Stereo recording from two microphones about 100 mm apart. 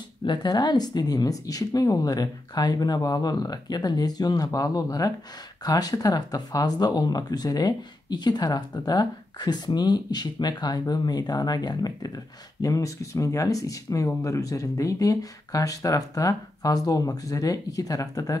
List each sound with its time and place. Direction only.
0.2 s speech: 50° left (ahead or behind)